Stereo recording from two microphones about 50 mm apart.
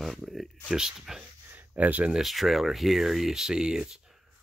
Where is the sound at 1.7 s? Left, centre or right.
Right.